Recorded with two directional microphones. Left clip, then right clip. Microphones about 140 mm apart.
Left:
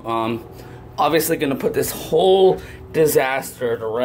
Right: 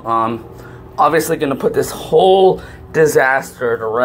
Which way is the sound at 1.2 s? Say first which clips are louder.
Right 4 dB; 10° left (ahead or behind).